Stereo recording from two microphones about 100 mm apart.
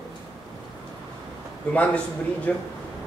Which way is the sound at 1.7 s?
15° left (ahead or behind).